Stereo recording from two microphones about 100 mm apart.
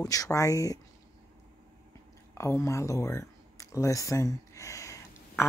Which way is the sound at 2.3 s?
30° left (ahead or behind).